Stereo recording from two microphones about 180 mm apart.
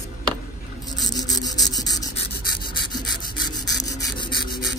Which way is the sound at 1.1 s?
20° left (ahead or behind).